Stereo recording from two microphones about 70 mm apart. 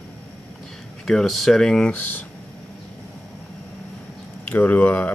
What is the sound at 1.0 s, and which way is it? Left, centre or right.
Speech, centre.